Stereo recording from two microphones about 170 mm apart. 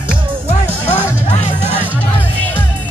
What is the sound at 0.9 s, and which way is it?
Music, 10° right (ahead or behind).